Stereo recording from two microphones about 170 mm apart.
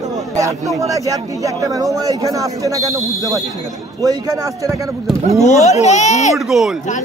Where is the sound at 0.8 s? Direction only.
20° right (ahead or behind).